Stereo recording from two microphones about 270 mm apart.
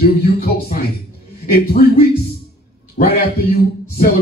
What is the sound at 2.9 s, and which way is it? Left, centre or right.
A man's voice, left.